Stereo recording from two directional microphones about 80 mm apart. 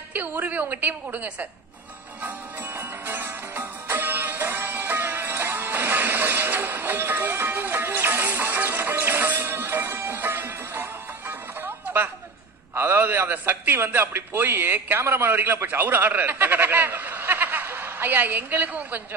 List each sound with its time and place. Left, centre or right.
0.1 s a woman's voice: right
2.2 s music: right
12.7 s a man's voice: right